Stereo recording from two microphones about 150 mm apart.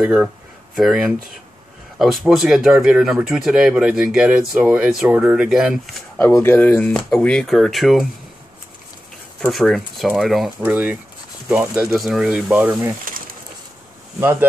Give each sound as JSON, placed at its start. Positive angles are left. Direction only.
{"t": 0.0, "sound": "speech", "side_deg": -5}
{"t": 6.2, "sound": "speech", "side_deg": 15}
{"t": 9.4, "sound": "speech", "side_deg": 0}
{"t": 10.6, "sound": "speech", "side_deg": -10}
{"t": 11.9, "sound": "speech", "side_deg": 0}